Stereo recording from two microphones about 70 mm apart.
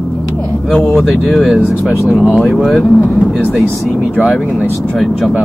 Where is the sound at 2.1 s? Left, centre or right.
Left.